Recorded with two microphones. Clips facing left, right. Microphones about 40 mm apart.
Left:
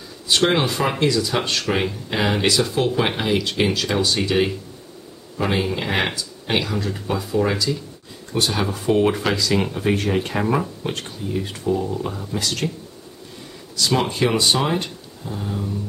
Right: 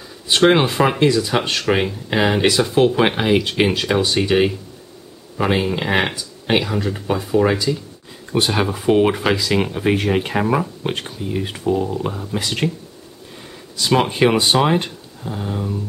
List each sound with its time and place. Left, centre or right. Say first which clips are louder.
0.3 s speech: right 4 dB; right
10.4 s speech: right 2 dB; centre
10.8 s speech: right 3 dB; centre
13.7 s speech: right 4 dB; right